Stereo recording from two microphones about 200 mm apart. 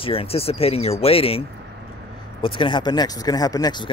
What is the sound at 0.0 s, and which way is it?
Speech, 30° left (ahead or behind).